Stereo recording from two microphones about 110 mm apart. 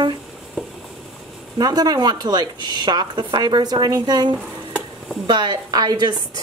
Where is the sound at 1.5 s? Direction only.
35° right (ahead or behind).